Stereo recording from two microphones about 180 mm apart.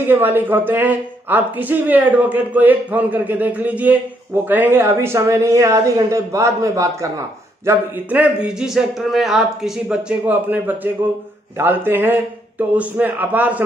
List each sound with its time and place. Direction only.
0.0 s speech: 10° right (ahead or behind)